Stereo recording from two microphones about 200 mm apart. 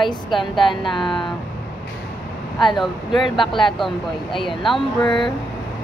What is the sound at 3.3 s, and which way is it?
Speech, 25° left (ahead or behind).